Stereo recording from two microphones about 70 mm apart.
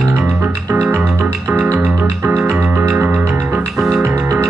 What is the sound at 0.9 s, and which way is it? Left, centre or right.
Music, right.